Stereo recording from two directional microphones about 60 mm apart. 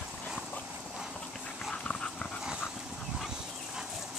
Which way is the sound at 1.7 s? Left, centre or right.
Centre.